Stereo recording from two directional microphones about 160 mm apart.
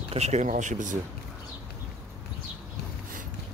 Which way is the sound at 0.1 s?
45° right (ahead or behind).